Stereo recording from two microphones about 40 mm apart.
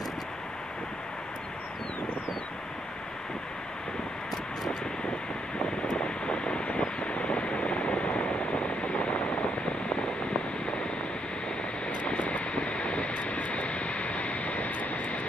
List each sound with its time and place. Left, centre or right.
6.0 s vehicle: left
12.2 s vehicle: left